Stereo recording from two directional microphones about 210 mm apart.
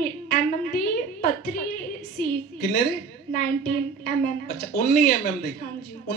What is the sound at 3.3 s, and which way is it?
A woman's voice, 45° left (ahead or behind).